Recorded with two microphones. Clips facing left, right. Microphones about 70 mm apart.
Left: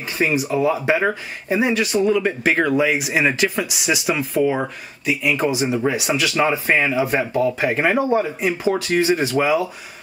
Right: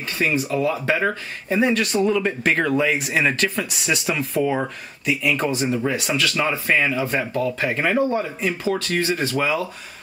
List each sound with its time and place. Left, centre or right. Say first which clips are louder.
0.2 s speech: left 2 dB; centre